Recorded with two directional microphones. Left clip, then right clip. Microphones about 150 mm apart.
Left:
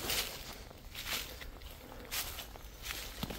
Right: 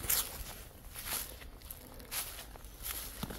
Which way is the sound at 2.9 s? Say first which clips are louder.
Left 3 dB; 10° right (ahead or behind).